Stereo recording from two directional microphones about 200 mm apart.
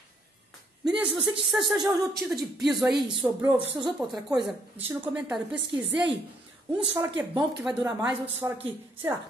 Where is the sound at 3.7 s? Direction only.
25° right (ahead or behind).